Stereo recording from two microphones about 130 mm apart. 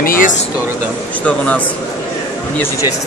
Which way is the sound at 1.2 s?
10° left (ahead or behind).